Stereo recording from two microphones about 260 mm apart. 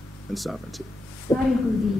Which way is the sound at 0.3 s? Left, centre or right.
Centre.